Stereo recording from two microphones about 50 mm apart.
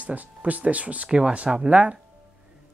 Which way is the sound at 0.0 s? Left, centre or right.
Right.